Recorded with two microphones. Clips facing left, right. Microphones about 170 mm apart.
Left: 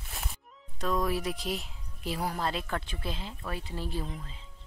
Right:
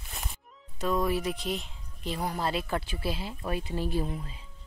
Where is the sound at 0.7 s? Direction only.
Centre (ahead or behind).